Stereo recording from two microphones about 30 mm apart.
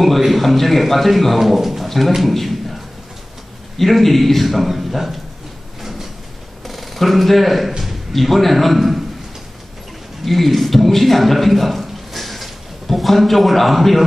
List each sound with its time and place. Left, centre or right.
0.0 s a man's voice: centre
1.9 s a sound: centre
3.7 s a man's voice: centre
5.8 s train: centre
6.6 s a man's voice: centre
10.2 s a man's voice: centre